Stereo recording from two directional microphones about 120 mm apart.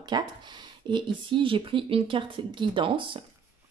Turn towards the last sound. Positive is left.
turn(degrees=-45)  # may be behind; listen again after turning